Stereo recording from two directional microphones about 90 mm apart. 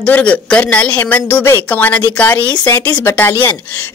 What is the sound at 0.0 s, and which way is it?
A woman's voice, 15° left (ahead or behind).